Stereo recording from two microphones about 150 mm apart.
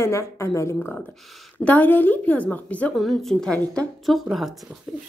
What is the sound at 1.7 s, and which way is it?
A woman's voice, 10° left (ahead or behind).